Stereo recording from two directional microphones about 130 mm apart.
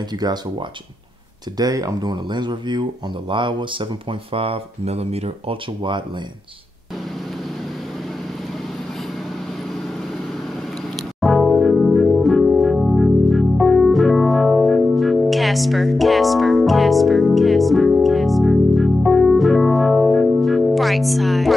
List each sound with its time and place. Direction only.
1.6 s speech: 30° right (ahead or behind); by 5.6 s 55° right (ahead or behind)
11.1 s music: centre (ahead or behind)